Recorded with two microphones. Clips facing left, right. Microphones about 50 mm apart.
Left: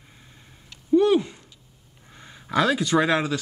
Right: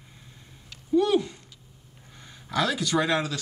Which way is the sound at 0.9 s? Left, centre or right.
Centre.